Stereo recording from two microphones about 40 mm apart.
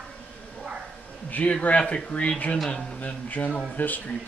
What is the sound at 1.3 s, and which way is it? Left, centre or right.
Speech, left.